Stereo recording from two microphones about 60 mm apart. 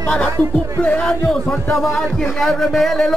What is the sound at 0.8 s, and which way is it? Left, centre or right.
Speech, left.